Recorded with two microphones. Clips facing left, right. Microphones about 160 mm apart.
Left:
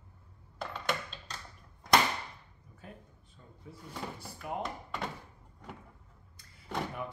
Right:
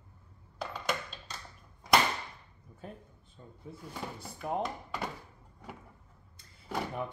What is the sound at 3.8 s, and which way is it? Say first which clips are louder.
Speech: even; centre (ahead or behind).